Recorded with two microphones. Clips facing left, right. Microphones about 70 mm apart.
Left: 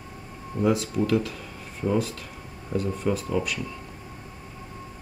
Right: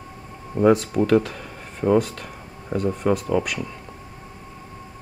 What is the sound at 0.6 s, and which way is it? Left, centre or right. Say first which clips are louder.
Speech: right 6 dB; right.